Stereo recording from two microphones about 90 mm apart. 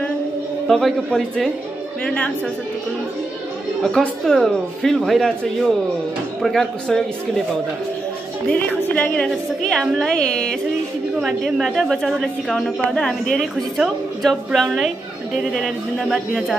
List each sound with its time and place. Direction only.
0.7 s a woman's voice: centre (ahead or behind)
3.8 s speech: 5° left (ahead or behind)
8.5 s a woman's voice: 15° left (ahead or behind)
13.7 s speech: centre (ahead or behind)